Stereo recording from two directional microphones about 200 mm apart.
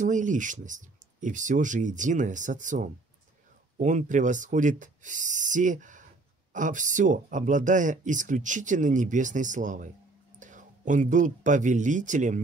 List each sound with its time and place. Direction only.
0.0 s speech: 40° right (ahead or behind)